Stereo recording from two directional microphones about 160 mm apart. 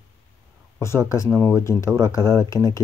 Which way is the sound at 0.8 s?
15° left (ahead or behind).